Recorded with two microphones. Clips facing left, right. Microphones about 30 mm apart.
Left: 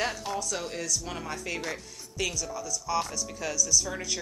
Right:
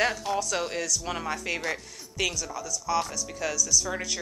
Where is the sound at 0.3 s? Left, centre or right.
Right.